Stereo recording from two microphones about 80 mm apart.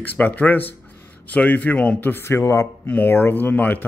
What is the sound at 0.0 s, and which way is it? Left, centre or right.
A man's voice, left.